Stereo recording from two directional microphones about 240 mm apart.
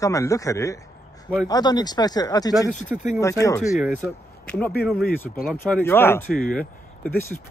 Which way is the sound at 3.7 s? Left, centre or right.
Centre.